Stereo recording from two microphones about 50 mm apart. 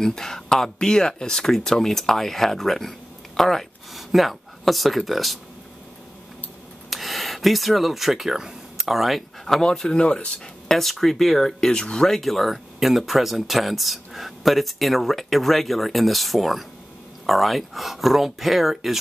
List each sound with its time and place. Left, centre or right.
0.0 s speech: centre
6.9 s speech: centre
9.6 s speech: centre
10.7 s speech: centre